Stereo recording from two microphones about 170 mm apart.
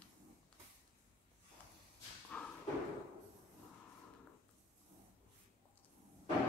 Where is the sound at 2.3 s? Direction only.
10° left (ahead or behind).